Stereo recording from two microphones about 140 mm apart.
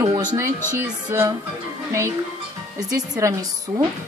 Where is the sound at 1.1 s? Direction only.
20° right (ahead or behind).